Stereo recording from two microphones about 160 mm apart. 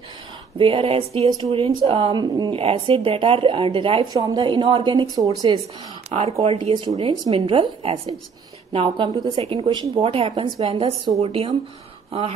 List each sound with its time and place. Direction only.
0.6 s speech: 35° right (ahead or behind)
6.0 s speech: 40° right (ahead or behind)